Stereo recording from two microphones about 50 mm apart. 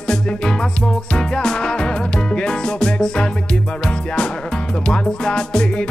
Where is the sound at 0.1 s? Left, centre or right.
Centre.